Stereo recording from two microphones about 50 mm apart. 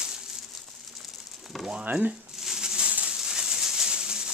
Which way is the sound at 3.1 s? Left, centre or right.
Centre.